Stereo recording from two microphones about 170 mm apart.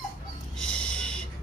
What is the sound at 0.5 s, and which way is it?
Music, 5° left (ahead or behind).